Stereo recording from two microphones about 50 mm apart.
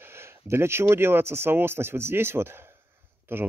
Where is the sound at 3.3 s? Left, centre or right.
Right.